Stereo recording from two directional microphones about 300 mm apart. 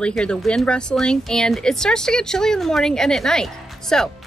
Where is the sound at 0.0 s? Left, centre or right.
Centre.